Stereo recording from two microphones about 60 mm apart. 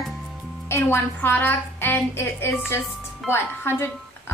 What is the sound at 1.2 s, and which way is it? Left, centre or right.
A woman's voice, left.